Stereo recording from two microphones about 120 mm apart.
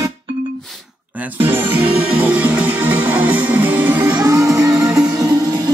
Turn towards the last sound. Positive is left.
turn(degrees=-25)  # may be behind; listen again after turning